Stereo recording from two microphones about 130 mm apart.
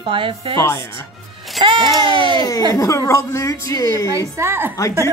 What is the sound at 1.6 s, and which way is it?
Music, 40° right (ahead or behind).